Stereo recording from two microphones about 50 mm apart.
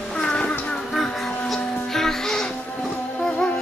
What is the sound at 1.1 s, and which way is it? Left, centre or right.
Music, centre.